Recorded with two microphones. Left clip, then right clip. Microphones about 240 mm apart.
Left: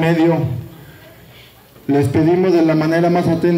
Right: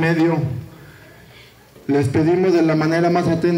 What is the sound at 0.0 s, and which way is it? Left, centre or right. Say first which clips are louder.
Speech: left 3 dB; left.